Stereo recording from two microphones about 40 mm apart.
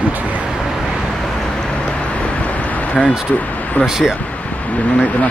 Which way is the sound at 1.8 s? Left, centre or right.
Left.